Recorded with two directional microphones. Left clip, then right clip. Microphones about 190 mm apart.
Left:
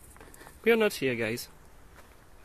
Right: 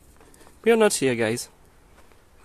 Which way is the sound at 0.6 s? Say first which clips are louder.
Right 6 dB; 40° right (ahead or behind).